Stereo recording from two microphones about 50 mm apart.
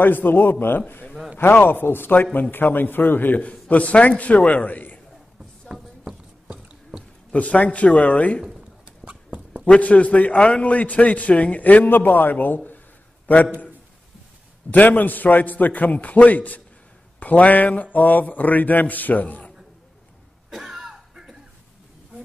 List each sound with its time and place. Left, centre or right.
0.0 s a man's voice: left
5.7 s a sound: centre
7.3 s a man's voice: left
9.0 s a sound: right
9.7 s a man's voice: left
14.7 s a man's voice: left
20.4 s cough: centre